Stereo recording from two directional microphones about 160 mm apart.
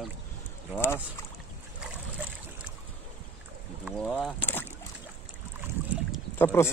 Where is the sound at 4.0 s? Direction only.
Centre (ahead or behind).